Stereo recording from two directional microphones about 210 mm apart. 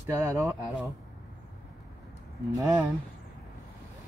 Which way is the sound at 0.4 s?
5° right (ahead or behind).